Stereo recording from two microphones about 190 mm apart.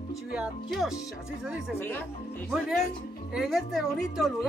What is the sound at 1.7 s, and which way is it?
Speech, 10° left (ahead or behind).